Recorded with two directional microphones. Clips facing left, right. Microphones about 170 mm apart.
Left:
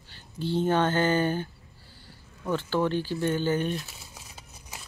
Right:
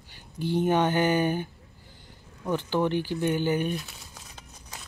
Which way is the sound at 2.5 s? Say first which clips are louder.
Right 1 dB; 15° right (ahead or behind).